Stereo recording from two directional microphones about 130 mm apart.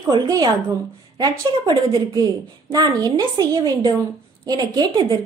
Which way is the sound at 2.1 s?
25° right (ahead or behind).